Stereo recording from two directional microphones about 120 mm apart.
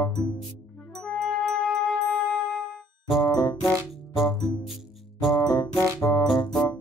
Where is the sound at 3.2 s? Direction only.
30° left (ahead or behind).